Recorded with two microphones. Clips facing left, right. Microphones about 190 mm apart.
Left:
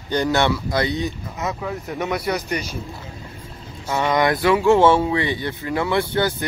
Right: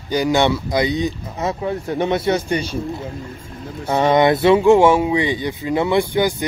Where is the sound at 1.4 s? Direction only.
30° right (ahead or behind).